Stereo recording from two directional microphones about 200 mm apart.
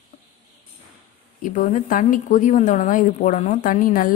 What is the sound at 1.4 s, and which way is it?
A woman's voice, 40° left (ahead or behind).